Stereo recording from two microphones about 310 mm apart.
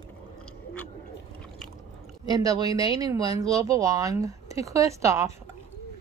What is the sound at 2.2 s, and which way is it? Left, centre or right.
Speech, centre.